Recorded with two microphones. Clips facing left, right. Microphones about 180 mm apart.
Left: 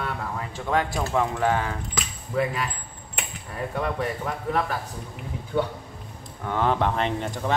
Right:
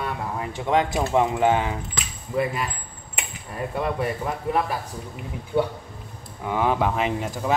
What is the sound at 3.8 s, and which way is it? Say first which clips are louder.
Speech: right 2 dB; 10° right (ahead or behind).